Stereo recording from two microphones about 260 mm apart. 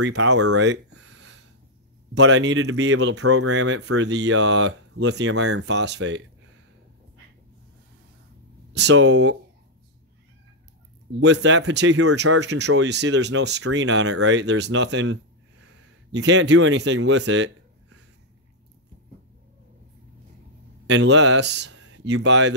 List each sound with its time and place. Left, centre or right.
0.1 s speech: right
0.7 s a sound: right
2.1 s speech: right
8.7 s speech: right
11.1 s speech: right
20.8 s speech: right